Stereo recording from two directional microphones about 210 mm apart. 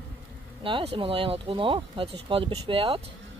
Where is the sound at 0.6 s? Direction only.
25° right (ahead or behind).